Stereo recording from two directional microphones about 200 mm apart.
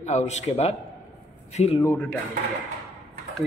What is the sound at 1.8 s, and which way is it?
Speech, 15° left (ahead or behind).